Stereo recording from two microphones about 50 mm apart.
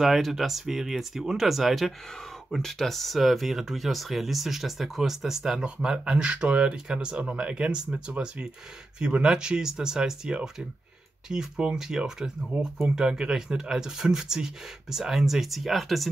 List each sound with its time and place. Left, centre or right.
0.0 s speech: centre